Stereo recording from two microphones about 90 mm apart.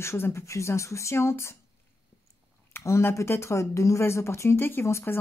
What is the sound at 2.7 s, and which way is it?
Speech, 30° left (ahead or behind).